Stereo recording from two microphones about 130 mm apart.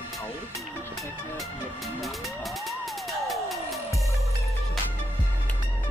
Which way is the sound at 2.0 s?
Centre (ahead or behind).